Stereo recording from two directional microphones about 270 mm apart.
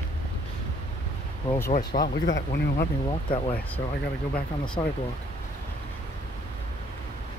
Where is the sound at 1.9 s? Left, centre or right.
Left.